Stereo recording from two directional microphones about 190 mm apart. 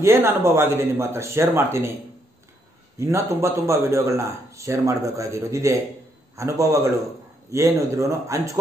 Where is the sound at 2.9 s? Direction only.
15° right (ahead or behind).